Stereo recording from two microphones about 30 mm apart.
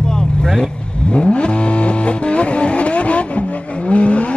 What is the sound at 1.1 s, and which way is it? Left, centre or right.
Vehicle, left.